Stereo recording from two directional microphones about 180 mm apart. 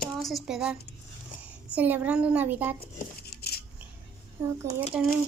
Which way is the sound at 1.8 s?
5° right (ahead or behind).